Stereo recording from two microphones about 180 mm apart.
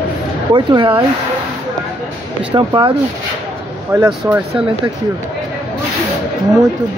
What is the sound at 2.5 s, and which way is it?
Speech, 25° right (ahead or behind).